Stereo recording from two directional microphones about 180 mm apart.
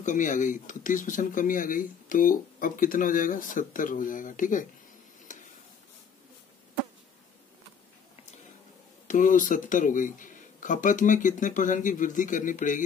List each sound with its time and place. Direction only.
0.0 s speech: 45° left (ahead or behind)
9.0 s speech: 45° left (ahead or behind)